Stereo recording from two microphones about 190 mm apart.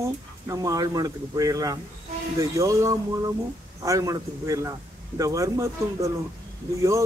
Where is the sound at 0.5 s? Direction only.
15° right (ahead or behind).